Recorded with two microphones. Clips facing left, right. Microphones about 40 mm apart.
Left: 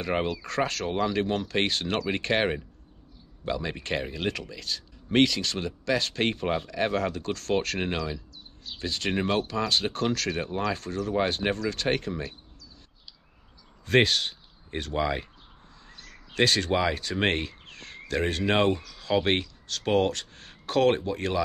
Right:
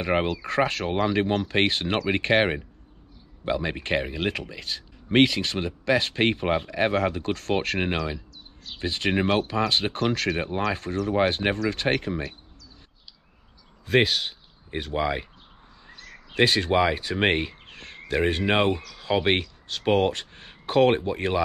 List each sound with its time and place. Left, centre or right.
0.0 s speech: right
13.8 s speech: centre